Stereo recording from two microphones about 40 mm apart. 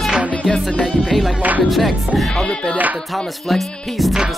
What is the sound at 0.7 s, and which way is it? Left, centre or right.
Music, left.